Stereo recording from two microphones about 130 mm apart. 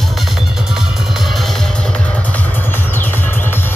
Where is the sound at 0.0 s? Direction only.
Centre (ahead or behind).